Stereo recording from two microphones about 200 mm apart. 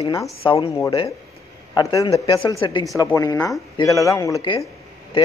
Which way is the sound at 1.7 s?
20° left (ahead or behind).